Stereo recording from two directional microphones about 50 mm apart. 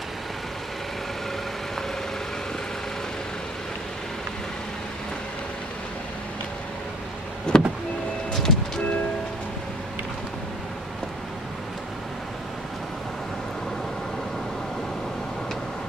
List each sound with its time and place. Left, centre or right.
7.5 s vehicle: centre